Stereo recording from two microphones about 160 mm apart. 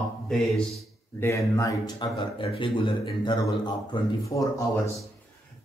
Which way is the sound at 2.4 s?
35° left (ahead or behind).